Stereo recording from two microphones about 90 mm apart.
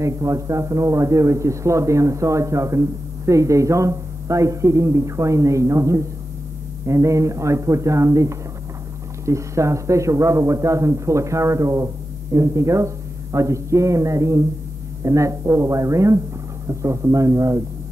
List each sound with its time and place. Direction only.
0.0 s speech: 35° right (ahead or behind)